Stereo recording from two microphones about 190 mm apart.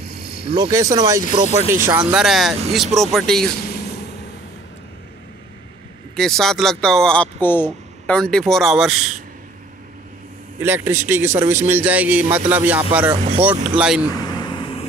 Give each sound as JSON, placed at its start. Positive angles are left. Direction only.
{"t": 0.6, "sound": "a man's voice", "side_deg": -15}
{"t": 6.1, "sound": "speech", "side_deg": 0}
{"t": 10.6, "sound": "a man's voice", "side_deg": -10}
{"t": 14.4, "sound": "vehicle", "side_deg": 25}